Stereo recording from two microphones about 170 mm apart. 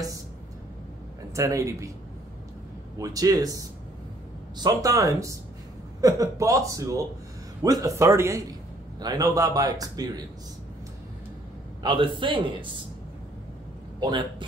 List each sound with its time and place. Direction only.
1.3 s a man's voice: 20° right (ahead or behind)
3.0 s a man's voice: 20° right (ahead or behind)
4.6 s a man's voice: 20° right (ahead or behind)
11.8 s a man's voice: 30° right (ahead or behind)
13.9 s a man's voice: 25° right (ahead or behind)